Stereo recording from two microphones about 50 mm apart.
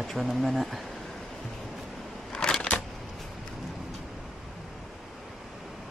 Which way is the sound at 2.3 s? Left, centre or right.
Centre.